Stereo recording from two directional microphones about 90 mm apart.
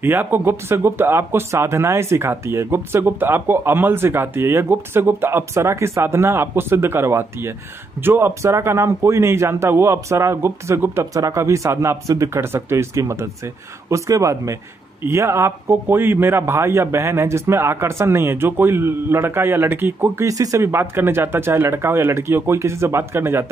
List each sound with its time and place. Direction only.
0.0 s a man's voice: 20° right (ahead or behind)
20.2 s speech: 35° right (ahead or behind)